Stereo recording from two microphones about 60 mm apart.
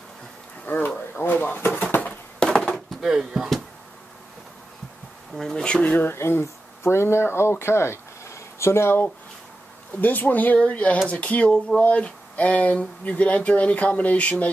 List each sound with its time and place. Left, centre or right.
0.7 s speech: left
1.9 s a sound: left
2.4 s chop: centre
2.7 s a sound: centre
3.1 s speech: centre
5.4 s speech: centre
5.9 s speech: left